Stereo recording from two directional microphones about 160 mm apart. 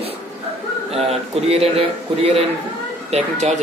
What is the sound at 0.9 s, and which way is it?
Speech, 40° right (ahead or behind).